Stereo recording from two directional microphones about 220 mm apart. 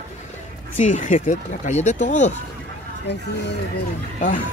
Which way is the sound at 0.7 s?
35° left (ahead or behind).